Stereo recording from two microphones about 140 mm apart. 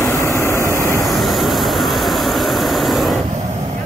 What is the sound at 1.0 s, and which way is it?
Vehicle, centre (ahead or behind).